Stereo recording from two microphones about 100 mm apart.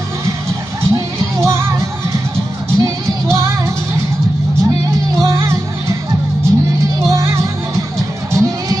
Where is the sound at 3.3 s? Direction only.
30° right (ahead or behind).